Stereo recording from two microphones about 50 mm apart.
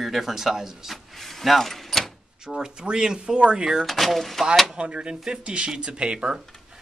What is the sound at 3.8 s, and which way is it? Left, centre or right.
Speech, centre.